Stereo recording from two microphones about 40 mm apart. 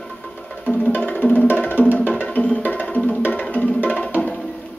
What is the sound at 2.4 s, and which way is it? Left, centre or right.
Music, left.